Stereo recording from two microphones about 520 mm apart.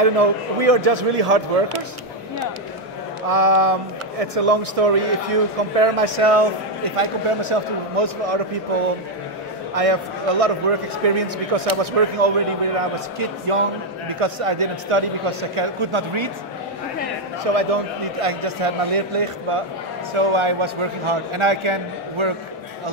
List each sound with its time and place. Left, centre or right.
0.2 s speech: right
3.3 s speech: right
9.8 s speech: right
17.5 s speech: right
20.2 s a man's voice: right